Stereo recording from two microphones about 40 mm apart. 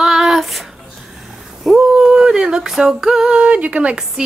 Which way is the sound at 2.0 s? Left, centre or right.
Centre.